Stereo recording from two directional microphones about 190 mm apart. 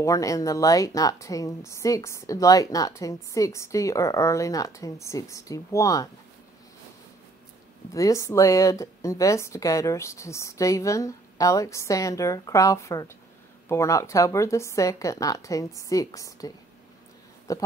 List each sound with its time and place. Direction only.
0.0 s a woman's voice: 15° left (ahead or behind)
7.9 s a woman's voice: 15° left (ahead or behind)